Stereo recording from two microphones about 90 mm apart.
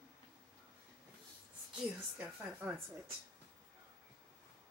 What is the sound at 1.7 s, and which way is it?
A woman's voice, 15° right (ahead or behind).